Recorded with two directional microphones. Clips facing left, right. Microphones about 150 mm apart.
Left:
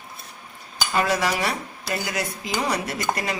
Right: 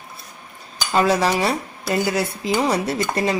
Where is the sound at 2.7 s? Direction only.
30° right (ahead or behind).